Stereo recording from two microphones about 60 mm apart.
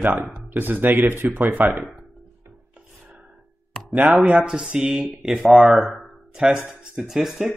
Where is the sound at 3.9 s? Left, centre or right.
Right.